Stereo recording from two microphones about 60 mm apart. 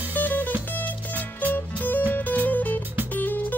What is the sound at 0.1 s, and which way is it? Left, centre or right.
Music, left.